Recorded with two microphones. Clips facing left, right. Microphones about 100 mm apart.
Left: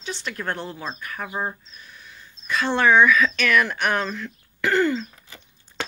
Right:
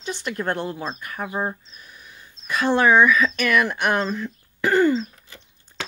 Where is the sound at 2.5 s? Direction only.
10° right (ahead or behind).